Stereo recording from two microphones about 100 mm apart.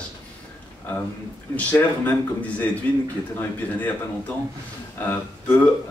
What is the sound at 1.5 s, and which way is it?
Speech, 15° left (ahead or behind).